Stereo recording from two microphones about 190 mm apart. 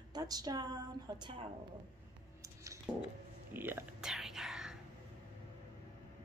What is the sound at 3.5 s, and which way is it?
Whispering, 10° right (ahead or behind).